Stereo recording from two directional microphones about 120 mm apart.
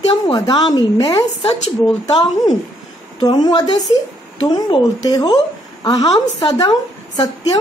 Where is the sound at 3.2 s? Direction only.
35° left (ahead or behind).